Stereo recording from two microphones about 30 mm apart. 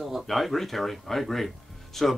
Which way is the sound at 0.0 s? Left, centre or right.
Centre.